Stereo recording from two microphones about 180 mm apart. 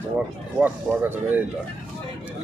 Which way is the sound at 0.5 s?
10° right (ahead or behind).